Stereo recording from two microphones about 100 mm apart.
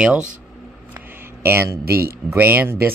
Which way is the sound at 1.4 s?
25° right (ahead or behind).